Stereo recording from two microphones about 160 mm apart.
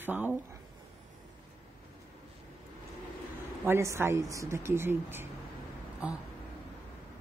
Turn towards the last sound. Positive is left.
turn(degrees=-5)  # may be behind; listen again after turning